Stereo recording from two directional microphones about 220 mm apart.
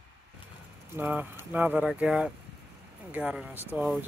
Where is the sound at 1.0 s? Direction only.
10° right (ahead or behind).